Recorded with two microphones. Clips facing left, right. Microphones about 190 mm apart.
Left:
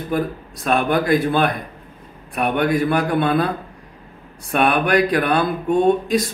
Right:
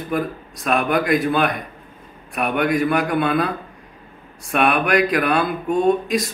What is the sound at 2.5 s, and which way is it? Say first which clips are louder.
Speech: even; 30° left (ahead or behind).